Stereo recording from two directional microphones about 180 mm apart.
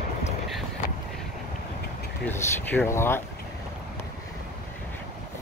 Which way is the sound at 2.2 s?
10° left (ahead or behind).